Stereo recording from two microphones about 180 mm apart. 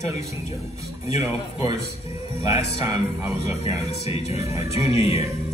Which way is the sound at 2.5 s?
35° left (ahead or behind).